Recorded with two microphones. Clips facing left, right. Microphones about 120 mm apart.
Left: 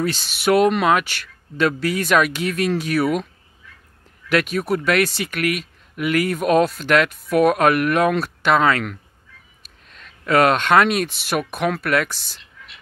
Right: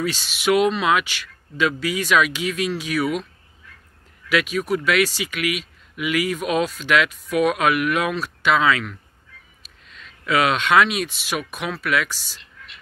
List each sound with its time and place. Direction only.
0.0 s speech: 40° left (ahead or behind)
4.3 s speech: 45° left (ahead or behind)